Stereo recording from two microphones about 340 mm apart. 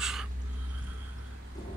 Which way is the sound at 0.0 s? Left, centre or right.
Centre.